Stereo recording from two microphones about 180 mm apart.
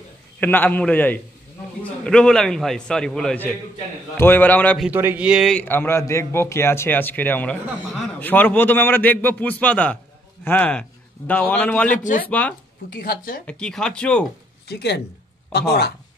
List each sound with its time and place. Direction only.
0.4 s a man's voice: 10° left (ahead or behind)
4.8 s a man's voice: 10° right (ahead or behind); by 12.0 s 10° left (ahead or behind)
12.0 s speech: 45° left (ahead or behind)
12.3 s a man's voice: 10° left (ahead or behind)
12.9 s speech: 55° left (ahead or behind)
13.5 s a man's voice: 5° left (ahead or behind)
14.7 s speech: 65° left (ahead or behind)